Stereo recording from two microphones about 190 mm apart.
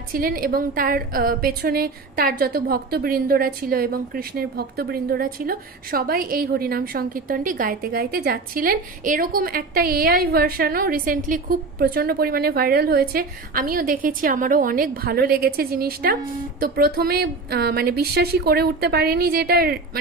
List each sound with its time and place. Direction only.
0.1 s a woman's voice: 50° right (ahead or behind)